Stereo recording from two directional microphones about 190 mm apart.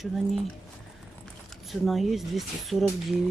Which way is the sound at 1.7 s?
Centre (ahead or behind).